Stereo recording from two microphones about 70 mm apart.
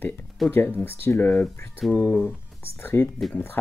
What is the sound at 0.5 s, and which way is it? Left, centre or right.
Speech, left.